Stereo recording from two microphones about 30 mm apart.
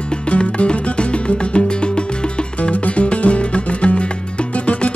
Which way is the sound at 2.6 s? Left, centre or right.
Left.